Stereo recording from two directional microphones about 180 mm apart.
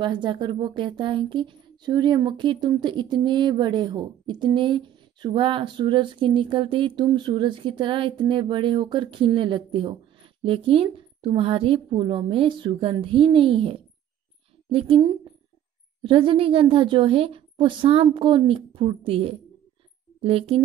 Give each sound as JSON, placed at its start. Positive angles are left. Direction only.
{"t": 0.0, "sound": "a woman's voice", "side_deg": -25}